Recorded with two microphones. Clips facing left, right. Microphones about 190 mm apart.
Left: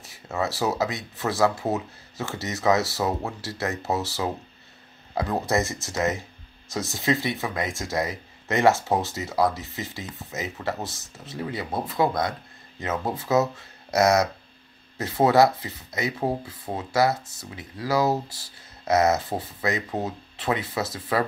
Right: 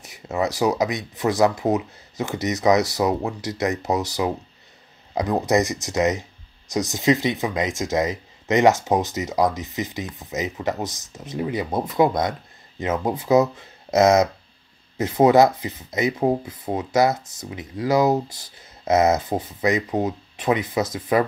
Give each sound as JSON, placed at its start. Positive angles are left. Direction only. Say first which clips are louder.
{"t": 0.0, "sound": "speech", "louder": "right 4 dB", "side_deg": -20}